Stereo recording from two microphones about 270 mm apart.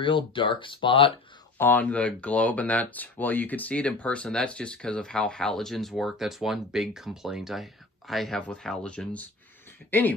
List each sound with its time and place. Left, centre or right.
0.0 s speech: centre
1.6 s speech: centre